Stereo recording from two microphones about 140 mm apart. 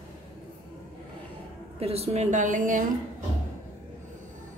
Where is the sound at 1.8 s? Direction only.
45° right (ahead or behind); by 2.8 s 65° right (ahead or behind).